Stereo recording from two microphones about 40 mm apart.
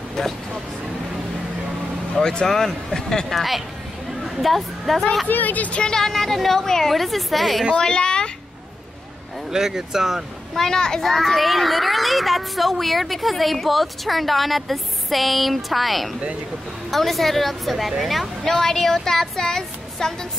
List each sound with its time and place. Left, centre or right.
0.2 s a woman's voice: centre
2.1 s a woman's voice: centre
3.3 s a child's voice: centre
4.2 s a sound: centre
5.3 s speech: left
5.8 s a child's voice: centre
7.8 s a woman's voice: left
9.5 s speech: centre
10.5 s a woman's voice: centre
11.0 s a child's voice: centre
18.6 s a woman's voice: centre